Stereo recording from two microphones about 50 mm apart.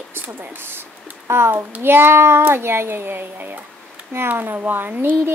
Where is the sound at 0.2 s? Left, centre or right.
Right.